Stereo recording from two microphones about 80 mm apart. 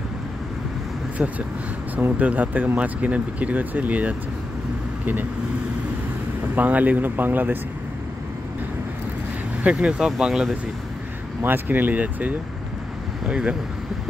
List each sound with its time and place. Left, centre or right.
2.0 s speech: centre
6.5 s speech: right
9.6 s speech: centre
11.4 s speech: right